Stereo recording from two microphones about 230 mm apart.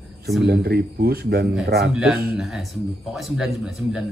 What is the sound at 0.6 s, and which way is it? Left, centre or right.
A man's voice, right.